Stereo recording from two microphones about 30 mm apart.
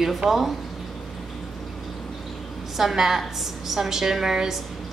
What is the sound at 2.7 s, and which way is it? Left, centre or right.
A woman's voice, centre.